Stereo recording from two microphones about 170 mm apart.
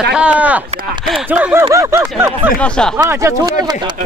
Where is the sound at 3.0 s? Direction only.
15° right (ahead or behind).